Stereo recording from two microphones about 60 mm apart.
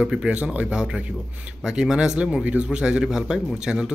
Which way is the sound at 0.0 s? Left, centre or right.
Centre.